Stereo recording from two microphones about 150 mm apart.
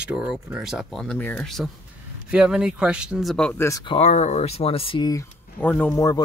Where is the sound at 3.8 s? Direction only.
45° left (ahead or behind).